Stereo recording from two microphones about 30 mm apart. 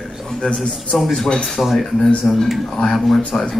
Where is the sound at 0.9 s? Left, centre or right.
Centre.